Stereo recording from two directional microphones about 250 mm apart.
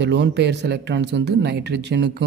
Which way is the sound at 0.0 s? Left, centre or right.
Right.